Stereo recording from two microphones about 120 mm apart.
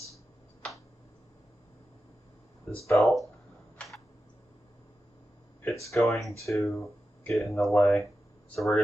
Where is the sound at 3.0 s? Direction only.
Centre (ahead or behind).